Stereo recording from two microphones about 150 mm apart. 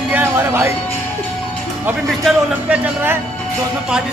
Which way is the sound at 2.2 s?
10° right (ahead or behind).